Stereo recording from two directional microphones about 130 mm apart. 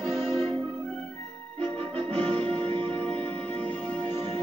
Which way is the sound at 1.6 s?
10° left (ahead or behind).